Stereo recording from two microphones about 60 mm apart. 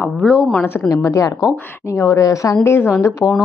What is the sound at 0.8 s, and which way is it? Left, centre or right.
Speech, left.